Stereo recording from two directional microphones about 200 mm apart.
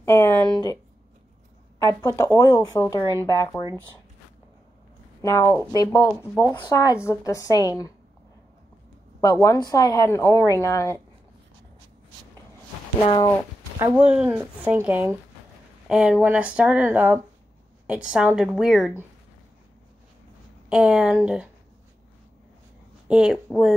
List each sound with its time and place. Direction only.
0.0 s a sound: 15° left (ahead or behind)
1.9 s speech: 15° left (ahead or behind)
5.2 s speech: 15° left (ahead or behind)
9.2 s speech: 15° left (ahead or behind)
13.0 s speech: 20° left (ahead or behind)
13.7 s a woman's voice: 5° right (ahead or behind)
20.7 s a woman's voice: 5° right (ahead or behind)
23.0 s a woman's voice: 5° right (ahead or behind)